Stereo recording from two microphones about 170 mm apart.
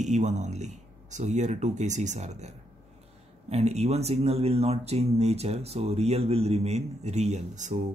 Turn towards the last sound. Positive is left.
turn(degrees=-45)  # may be behind; listen again after turning